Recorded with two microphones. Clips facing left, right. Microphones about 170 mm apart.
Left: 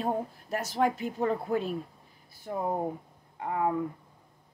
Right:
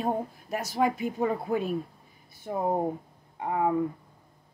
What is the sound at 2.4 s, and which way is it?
Speech, 25° right (ahead or behind).